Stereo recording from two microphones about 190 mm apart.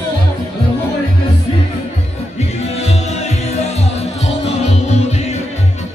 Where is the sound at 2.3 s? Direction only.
35° left (ahead or behind).